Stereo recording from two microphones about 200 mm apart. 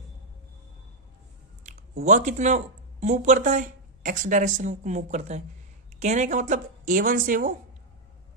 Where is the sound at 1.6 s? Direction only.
35° right (ahead or behind).